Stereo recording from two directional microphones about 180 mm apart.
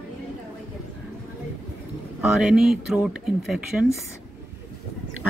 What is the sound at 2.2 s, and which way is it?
Speech, 5° right (ahead or behind).